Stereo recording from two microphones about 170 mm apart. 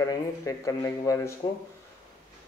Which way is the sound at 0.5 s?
20° left (ahead or behind).